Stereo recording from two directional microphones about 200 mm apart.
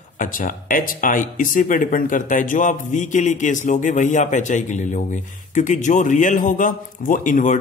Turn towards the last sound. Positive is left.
turn(degrees=40)  # may be behind; listen again after turning